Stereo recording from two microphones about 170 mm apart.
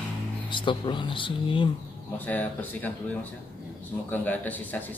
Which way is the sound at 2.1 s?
10° left (ahead or behind).